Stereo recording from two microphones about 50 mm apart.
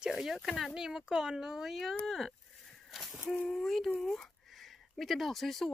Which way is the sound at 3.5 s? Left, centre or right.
Centre.